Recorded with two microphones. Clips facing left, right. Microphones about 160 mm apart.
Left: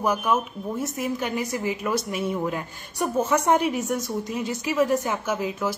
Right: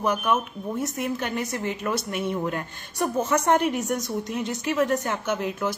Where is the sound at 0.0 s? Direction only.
5° left (ahead or behind).